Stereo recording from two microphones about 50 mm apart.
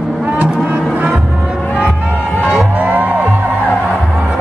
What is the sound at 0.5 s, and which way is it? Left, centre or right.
Music, right.